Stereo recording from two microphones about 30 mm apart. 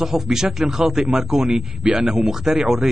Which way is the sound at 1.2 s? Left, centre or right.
Right.